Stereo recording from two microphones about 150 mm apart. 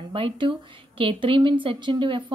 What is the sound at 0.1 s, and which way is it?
Speech, 35° right (ahead or behind).